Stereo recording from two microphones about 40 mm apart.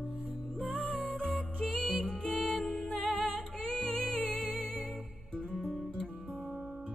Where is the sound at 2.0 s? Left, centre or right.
Centre.